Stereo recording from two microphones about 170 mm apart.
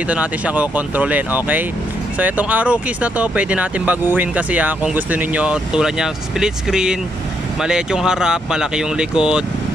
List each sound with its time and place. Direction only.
0.1 s speech: 10° right (ahead or behind)